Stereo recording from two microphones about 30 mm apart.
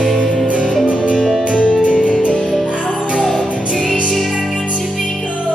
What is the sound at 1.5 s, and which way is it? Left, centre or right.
Music, left.